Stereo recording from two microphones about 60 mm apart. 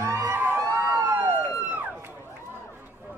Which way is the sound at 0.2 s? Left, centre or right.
Right.